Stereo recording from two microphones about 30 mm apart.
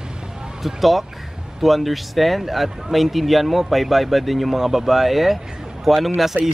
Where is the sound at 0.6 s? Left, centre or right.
Centre.